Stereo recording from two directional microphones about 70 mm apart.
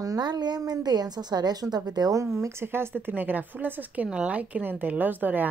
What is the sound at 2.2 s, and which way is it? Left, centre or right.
A woman's voice, right.